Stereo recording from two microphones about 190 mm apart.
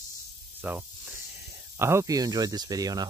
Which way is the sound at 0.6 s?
5° right (ahead or behind).